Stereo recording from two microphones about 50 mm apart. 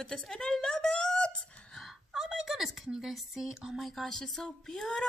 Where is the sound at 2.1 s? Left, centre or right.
Centre.